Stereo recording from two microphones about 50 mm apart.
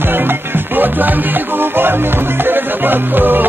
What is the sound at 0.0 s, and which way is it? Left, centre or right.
Music, right.